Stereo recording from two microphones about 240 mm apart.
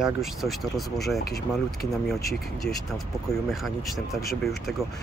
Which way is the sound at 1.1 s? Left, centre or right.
Left.